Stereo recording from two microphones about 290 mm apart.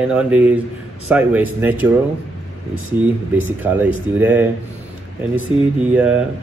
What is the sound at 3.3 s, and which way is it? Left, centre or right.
Speech, centre.